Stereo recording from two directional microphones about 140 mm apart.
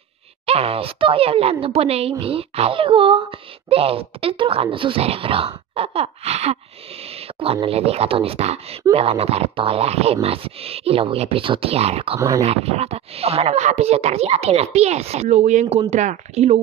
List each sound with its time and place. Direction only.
0.5 s speech: 45° right (ahead or behind)